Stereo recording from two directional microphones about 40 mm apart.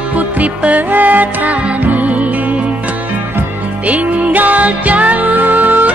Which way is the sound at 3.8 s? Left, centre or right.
Right.